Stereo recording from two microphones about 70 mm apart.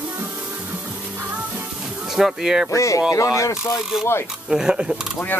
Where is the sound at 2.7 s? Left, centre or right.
Left.